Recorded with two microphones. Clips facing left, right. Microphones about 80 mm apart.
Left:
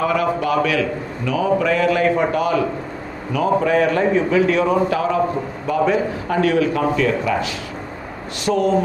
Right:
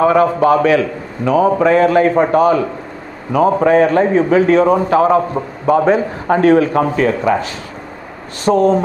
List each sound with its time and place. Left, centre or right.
0.0 s a man's voice: right